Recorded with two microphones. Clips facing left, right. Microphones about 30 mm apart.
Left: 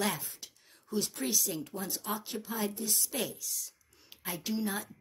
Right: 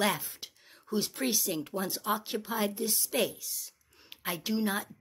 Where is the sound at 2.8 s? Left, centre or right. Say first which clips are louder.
Right 5 dB; centre.